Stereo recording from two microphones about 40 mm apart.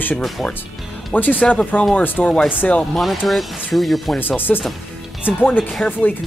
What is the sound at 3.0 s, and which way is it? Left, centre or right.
Speech, centre.